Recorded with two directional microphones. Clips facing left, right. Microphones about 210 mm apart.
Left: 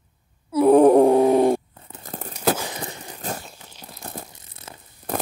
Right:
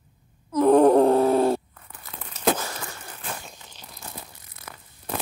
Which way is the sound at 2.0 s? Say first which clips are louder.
Left 8 dB; 45° left (ahead or behind).